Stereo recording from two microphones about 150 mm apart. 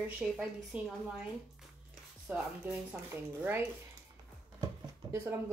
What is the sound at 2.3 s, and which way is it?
Speech, 10° right (ahead or behind).